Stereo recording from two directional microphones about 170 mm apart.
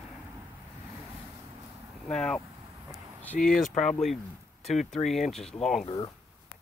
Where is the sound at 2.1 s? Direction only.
5° left (ahead or behind).